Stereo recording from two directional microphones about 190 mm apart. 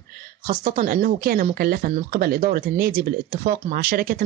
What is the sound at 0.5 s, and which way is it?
A woman's voice, 45° right (ahead or behind).